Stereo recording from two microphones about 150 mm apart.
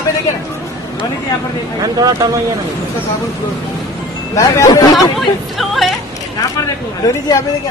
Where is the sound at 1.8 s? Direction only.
25° right (ahead or behind).